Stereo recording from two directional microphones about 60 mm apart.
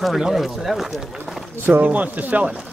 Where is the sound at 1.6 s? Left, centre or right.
Right.